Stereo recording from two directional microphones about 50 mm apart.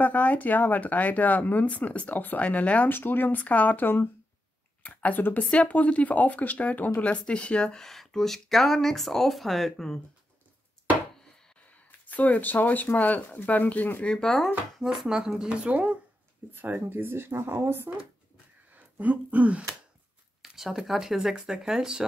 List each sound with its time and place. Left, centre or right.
0.0 s speech: left
2.9 s speech: left
7.0 s speech: left; by 9.9 s centre
11.6 s speech: left
14.0 s speech: centre
14.8 s speech: centre
16.7 s speech: right
18.8 s speech: right
20.4 s speech: centre